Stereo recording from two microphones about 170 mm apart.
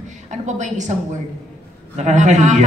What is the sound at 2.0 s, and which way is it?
Speech, 45° right (ahead or behind).